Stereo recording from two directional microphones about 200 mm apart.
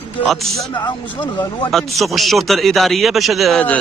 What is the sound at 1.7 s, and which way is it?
A man's voice, centre (ahead or behind).